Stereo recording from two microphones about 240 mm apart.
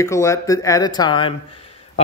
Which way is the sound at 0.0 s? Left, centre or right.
Centre.